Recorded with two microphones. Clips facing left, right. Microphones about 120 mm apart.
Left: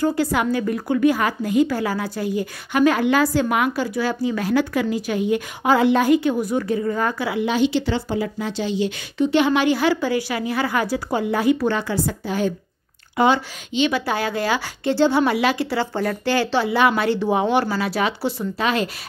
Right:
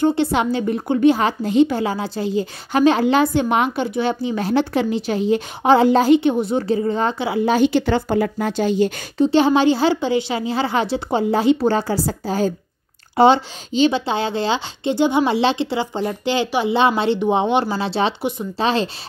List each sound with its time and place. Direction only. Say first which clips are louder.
0.0 s a woman's voice: right 3 dB; 25° right (ahead or behind)
7.4 s speech: right 4 dB; 45° right (ahead or behind)
9.2 s a woman's voice: right 3 dB; 30° right (ahead or behind)